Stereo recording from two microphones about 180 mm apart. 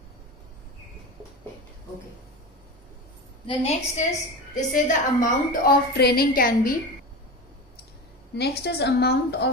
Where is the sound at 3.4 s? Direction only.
35° left (ahead or behind).